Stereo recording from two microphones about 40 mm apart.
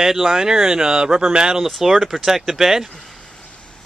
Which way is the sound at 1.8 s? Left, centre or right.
Centre.